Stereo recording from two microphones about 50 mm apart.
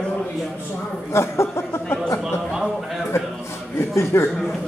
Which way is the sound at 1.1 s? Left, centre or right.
Left.